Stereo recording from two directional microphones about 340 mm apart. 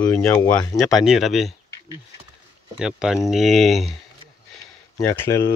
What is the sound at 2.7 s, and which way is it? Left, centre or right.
Speech, centre.